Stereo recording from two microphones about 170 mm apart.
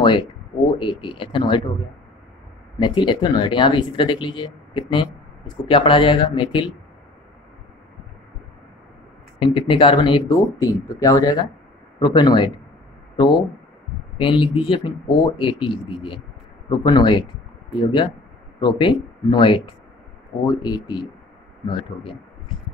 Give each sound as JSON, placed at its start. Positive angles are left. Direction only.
{"t": 0.7, "sound": "speech", "side_deg": 30}
{"t": 2.8, "sound": "speech", "side_deg": 25}
{"t": 9.4, "sound": "speech", "side_deg": 30}